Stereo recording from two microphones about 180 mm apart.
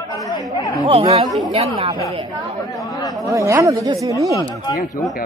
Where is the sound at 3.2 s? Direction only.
15° right (ahead or behind).